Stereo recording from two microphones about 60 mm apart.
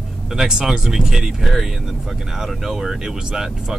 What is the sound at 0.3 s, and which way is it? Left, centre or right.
Speech, centre.